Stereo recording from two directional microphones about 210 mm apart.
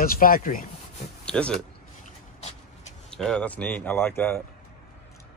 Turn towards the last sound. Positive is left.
turn(degrees=10)  # may be behind; listen again after turning